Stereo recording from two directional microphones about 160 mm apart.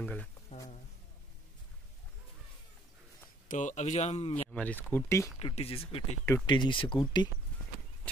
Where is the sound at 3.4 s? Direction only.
50° left (ahead or behind).